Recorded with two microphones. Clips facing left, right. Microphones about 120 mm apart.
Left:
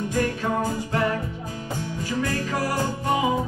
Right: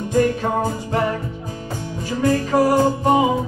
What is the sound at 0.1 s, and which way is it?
Music, 25° right (ahead or behind).